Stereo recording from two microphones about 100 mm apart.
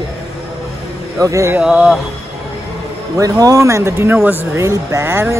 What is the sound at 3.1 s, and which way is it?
Speech, 35° right (ahead or behind).